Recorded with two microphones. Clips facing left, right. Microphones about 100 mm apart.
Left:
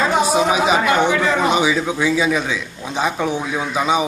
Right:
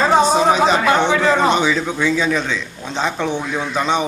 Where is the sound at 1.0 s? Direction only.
30° right (ahead or behind).